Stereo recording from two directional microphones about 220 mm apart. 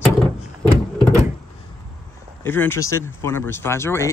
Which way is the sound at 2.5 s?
10° left (ahead or behind).